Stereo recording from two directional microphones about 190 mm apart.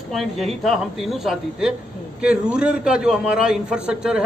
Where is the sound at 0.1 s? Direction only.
Centre (ahead or behind).